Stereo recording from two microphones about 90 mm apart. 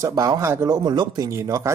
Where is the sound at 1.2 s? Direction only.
35° right (ahead or behind).